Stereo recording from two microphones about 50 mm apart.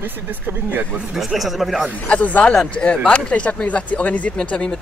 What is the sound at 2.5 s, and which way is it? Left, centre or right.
Speech, left.